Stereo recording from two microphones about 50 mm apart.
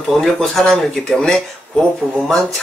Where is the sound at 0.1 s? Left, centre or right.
Centre.